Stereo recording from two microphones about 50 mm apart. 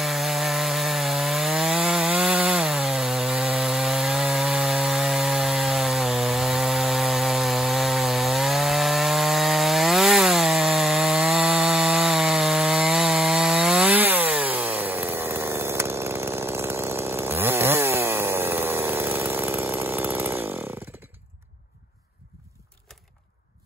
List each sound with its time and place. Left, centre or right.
0.0 s wood: centre
13.9 s chainsaw: right